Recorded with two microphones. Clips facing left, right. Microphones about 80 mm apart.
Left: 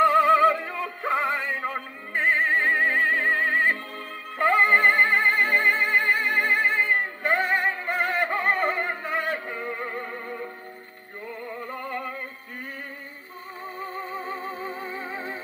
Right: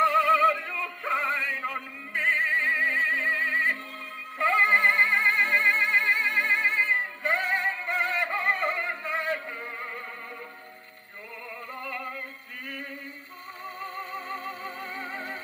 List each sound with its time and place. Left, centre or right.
0.3 s music: left
0.7 s synthetic singing: left
1.1 s synthetic singing: left
2.1 s music: left
13.8 s music: left